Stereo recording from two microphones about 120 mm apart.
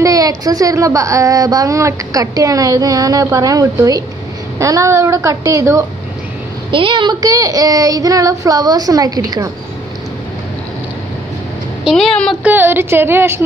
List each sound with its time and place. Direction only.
0.0 s a woman's voice: 30° right (ahead or behind)
6.7 s speech: 45° right (ahead or behind)
11.8 s a woman's voice: centre (ahead or behind)
12.4 s a woman's voice: 15° right (ahead or behind)